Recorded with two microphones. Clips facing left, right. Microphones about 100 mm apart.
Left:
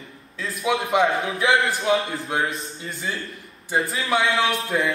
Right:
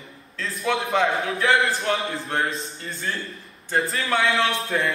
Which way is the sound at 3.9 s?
5° left (ahead or behind).